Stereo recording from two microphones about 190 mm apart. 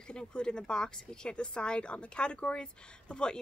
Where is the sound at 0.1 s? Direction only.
5° left (ahead or behind).